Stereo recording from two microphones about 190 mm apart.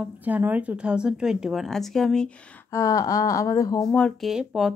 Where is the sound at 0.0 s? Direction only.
10° right (ahead or behind).